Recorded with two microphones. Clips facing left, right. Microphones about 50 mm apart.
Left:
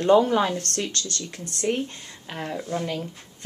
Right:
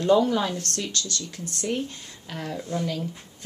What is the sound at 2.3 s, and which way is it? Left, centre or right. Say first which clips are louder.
Speech: left 1 dB; left.